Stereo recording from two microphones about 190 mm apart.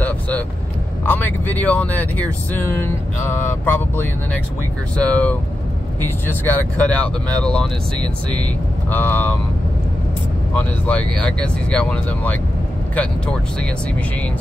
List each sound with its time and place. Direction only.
1.0 s speech: 10° left (ahead or behind)
8.0 s speech: 25° right (ahead or behind)
8.9 s speech: 10° left (ahead or behind)
10.5 s speech: 10° left (ahead or behind)